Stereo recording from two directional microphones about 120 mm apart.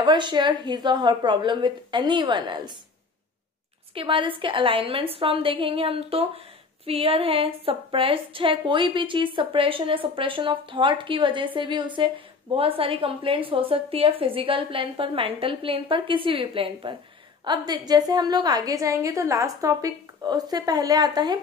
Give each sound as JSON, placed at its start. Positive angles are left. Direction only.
{"t": 0.0, "sound": "a woman's voice", "side_deg": -40}
{"t": 3.9, "sound": "a woman's voice", "side_deg": -45}
{"t": 12.5, "sound": "a woman's voice", "side_deg": -50}
{"t": 17.5, "sound": "a woman's voice", "side_deg": -35}